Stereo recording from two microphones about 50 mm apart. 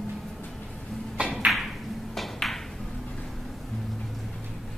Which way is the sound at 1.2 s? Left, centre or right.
Right.